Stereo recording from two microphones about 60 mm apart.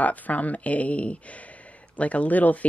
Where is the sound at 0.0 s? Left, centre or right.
Left.